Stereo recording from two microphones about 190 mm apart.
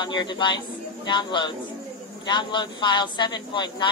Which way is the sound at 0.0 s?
25° left (ahead or behind).